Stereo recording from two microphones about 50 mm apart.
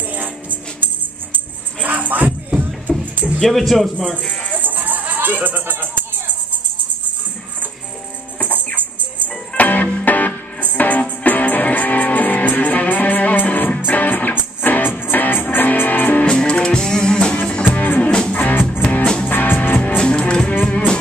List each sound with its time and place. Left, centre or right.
0.1 s music: right
2.9 s music: centre
3.3 s speech: centre
4.1 s speech: centre
4.6 s music: right
9.6 s music: left
16.3 s music: centre
17.6 s music: left
18.1 s music: centre
18.4 s music: left
20.0 s music: centre